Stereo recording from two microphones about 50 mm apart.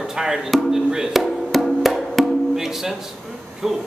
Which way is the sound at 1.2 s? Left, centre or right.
Centre.